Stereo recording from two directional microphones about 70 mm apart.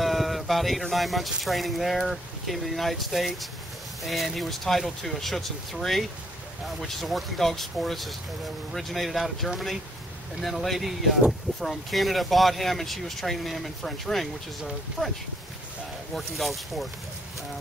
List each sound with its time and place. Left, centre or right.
0.0 s speech: centre
16.2 s speech: centre